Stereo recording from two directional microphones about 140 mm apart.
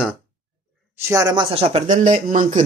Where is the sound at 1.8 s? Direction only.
70° right (ahead or behind).